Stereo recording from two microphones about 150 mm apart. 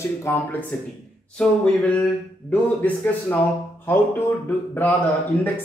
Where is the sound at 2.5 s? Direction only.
10° left (ahead or behind).